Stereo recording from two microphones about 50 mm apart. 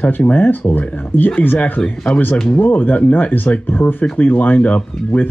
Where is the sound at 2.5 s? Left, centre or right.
Left.